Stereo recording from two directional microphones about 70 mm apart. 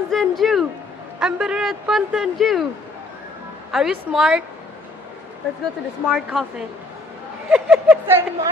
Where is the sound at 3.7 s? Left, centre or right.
Centre.